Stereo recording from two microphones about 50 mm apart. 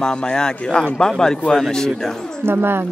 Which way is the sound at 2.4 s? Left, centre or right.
Right.